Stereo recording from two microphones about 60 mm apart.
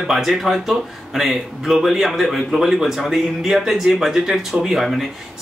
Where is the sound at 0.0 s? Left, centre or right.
Centre.